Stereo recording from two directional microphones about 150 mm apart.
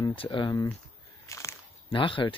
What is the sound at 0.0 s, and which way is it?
Speech, 35° left (ahead or behind).